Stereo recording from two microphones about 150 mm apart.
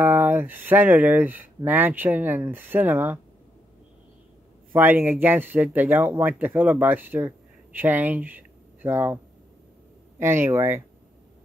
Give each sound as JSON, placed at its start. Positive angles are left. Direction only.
{"t": 0.0, "sound": "speech", "side_deg": -15}
{"t": 4.7, "sound": "speech", "side_deg": -15}